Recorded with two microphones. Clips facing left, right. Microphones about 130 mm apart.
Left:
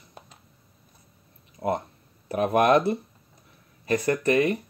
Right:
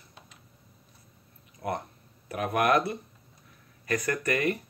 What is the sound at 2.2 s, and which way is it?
Speech, 30° left (ahead or behind).